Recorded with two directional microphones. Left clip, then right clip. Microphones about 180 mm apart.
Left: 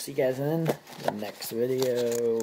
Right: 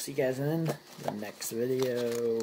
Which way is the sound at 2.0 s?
25° left (ahead or behind).